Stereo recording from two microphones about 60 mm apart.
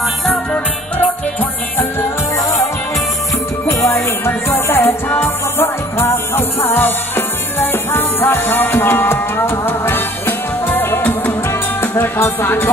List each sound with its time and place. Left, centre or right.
3.6 s music: left
12.2 s music: left